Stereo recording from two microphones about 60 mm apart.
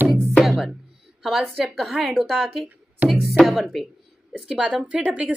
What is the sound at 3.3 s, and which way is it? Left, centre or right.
Speech, centre.